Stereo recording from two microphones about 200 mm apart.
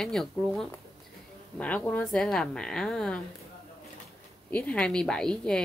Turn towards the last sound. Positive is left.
turn(degrees=5)  # may be behind; listen again after turning